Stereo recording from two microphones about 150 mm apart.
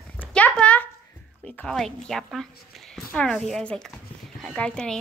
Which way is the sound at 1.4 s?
5° left (ahead or behind).